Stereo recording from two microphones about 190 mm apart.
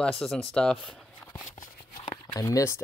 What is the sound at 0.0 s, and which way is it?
Speech, 5° left (ahead or behind).